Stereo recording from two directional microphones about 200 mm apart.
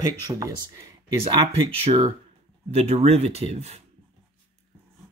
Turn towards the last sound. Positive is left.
turn(degrees=-30)  # may be behind; listen again after turning